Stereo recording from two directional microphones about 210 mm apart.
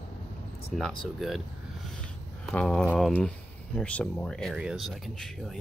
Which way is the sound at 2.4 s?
5° left (ahead or behind).